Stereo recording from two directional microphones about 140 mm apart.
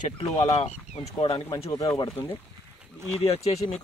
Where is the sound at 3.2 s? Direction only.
45° left (ahead or behind).